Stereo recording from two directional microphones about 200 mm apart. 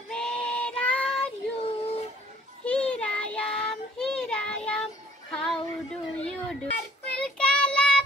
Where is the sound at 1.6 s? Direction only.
30° left (ahead or behind).